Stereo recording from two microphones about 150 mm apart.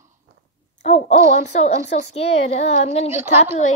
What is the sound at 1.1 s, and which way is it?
Speech, 45° left (ahead or behind).